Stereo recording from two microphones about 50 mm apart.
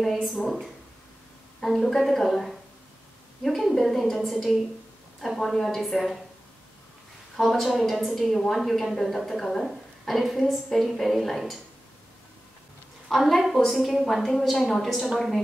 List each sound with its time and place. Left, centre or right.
0.0 s a woman's voice: centre
1.6 s a woman's voice: centre
7.3 s a woman's voice: centre
13.1 s a woman's voice: centre